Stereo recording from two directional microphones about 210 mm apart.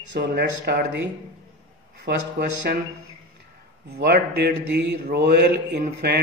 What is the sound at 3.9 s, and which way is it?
A man's voice, 50° right (ahead or behind).